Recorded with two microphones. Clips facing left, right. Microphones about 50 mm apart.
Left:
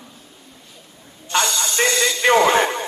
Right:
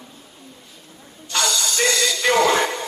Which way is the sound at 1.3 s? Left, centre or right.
Left.